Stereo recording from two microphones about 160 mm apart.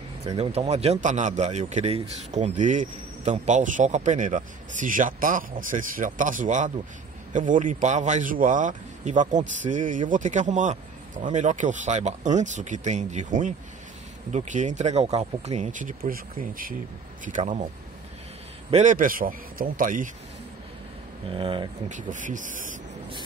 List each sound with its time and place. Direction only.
0.4 s a man's voice: 40° right (ahead or behind)
16.1 s a man's voice: 60° right (ahead or behind)
18.7 s a man's voice: 50° right (ahead or behind)
21.3 s speech: 35° right (ahead or behind)
22.1 s a man's voice: 55° right (ahead or behind)